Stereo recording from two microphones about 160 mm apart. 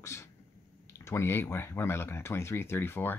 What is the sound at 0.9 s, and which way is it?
Speech, 15° left (ahead or behind).